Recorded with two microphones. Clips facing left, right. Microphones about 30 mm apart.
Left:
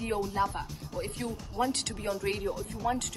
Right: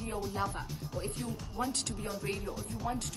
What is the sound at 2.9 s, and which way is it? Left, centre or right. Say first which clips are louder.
Speech: left 6 dB; left.